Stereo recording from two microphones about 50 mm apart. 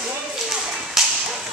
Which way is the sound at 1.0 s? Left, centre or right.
Centre.